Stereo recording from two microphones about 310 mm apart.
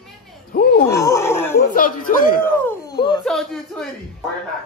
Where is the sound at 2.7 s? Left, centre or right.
Centre.